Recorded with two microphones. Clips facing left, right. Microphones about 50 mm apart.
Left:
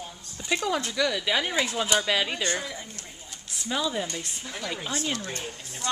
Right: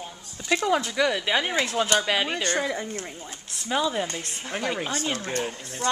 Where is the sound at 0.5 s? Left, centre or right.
Right.